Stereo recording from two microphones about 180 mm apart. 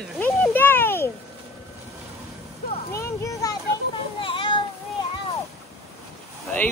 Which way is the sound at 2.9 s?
15° left (ahead or behind).